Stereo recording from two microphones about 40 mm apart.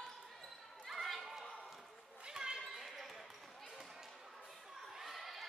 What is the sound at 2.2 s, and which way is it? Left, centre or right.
Basketball bounce, centre.